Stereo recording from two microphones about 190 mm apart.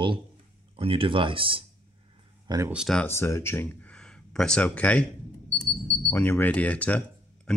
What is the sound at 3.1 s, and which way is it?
Speech, 15° left (ahead or behind).